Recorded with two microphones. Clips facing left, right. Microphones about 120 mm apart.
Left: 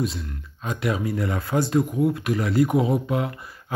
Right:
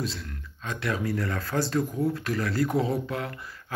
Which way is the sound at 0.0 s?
20° left (ahead or behind).